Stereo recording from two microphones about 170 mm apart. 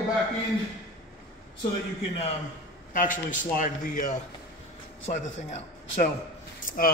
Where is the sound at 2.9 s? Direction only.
50° left (ahead or behind).